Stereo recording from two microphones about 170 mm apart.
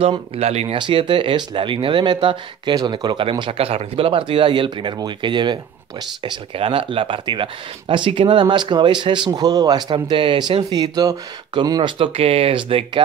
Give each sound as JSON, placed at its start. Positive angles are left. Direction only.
{"t": 0.0, "sound": "speech", "side_deg": -35}